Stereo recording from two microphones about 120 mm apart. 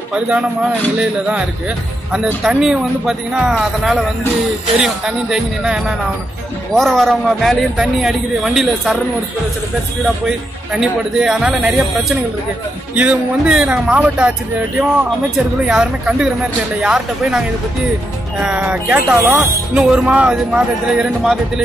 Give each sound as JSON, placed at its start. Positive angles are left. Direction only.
{"t": 0.1, "sound": "speech", "side_deg": -10}
{"t": 10.0, "sound": "speech", "side_deg": -5}